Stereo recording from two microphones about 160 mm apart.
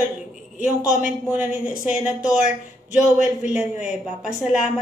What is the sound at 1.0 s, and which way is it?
A woman's voice, 5° right (ahead or behind).